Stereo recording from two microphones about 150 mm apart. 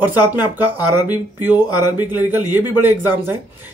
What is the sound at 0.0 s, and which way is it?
Speech, 15° right (ahead or behind).